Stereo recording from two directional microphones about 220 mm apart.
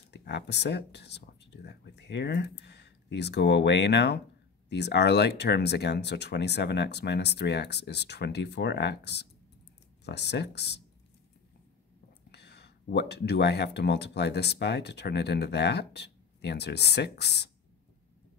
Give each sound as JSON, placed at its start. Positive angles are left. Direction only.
{"t": 0.1, "sound": "speech", "side_deg": 50}
{"t": 12.3, "sound": "speech", "side_deg": 50}